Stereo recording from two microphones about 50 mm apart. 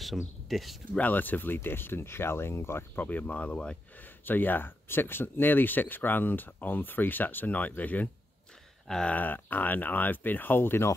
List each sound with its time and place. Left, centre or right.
0.0 s speech: centre
0.9 s speech: left
3.0 s speech: left
4.2 s speech: left